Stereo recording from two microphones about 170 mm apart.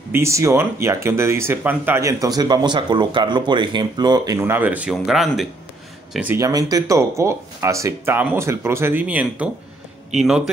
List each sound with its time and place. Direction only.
0.1 s speech: 15° right (ahead or behind); by 5.5 s centre (ahead or behind)
6.1 s speech: 15° right (ahead or behind)